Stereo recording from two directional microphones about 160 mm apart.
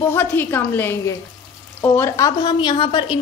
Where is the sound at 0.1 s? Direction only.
15° left (ahead or behind).